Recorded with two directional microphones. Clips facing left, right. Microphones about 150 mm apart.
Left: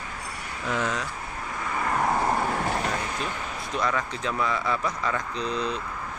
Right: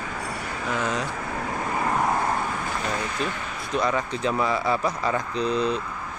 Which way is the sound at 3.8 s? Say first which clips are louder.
Right 3 dB; 25° right (ahead or behind).